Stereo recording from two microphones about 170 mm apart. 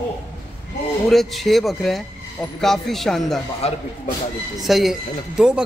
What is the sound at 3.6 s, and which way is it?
Speech, 35° left (ahead or behind).